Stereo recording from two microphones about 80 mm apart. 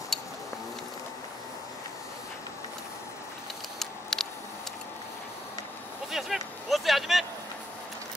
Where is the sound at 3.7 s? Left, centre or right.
Centre.